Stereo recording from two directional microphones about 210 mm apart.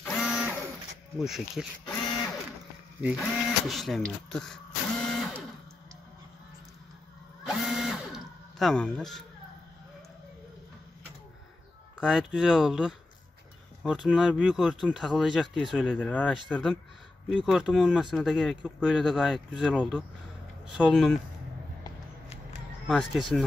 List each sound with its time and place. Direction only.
0.0 s printer: centre (ahead or behind)
1.1 s speech: centre (ahead or behind)
3.0 s speech: 5° right (ahead or behind)
4.3 s printer: 5° left (ahead or behind)
7.4 s a sound: centre (ahead or behind)
12.0 s speech: 5° right (ahead or behind)
22.8 s speech: centre (ahead or behind)